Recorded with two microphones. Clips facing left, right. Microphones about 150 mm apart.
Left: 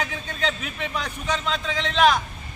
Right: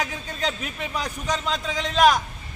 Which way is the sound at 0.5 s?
10° right (ahead or behind).